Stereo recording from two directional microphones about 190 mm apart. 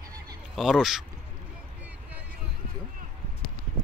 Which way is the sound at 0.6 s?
Centre (ahead or behind).